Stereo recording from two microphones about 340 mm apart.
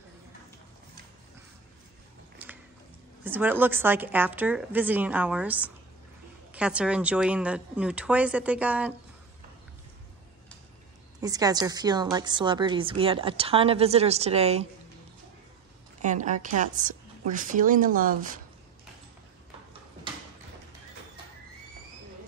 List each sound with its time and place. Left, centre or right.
2.3 s a sound: centre
3.3 s a woman's voice: centre
11.1 s a woman's voice: centre
16.0 s a woman's voice: right